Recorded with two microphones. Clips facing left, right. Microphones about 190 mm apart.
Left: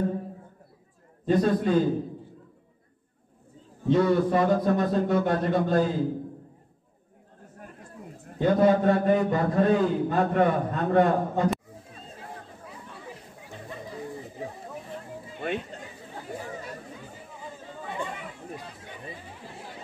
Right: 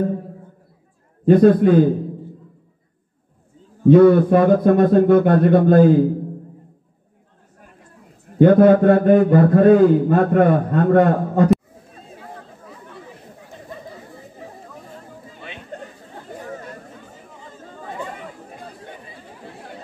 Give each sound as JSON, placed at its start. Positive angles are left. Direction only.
{"t": 1.2, "sound": "a man's voice", "side_deg": -55}
{"t": 3.8, "sound": "a man's voice", "side_deg": -55}
{"t": 8.4, "sound": "a man's voice", "side_deg": -60}
{"t": 15.7, "sound": "chatter", "side_deg": -55}
{"t": 18.1, "sound": "a sound", "side_deg": -45}